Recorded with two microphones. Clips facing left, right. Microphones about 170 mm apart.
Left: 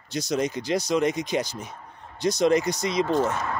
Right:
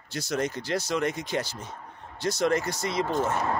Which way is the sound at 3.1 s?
20° right (ahead or behind).